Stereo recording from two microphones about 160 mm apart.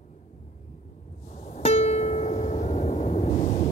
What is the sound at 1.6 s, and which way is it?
Music, 40° left (ahead or behind).